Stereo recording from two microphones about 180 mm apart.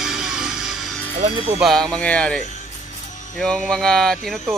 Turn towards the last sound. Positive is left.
turn(degrees=0)  # may be behind; listen again after turning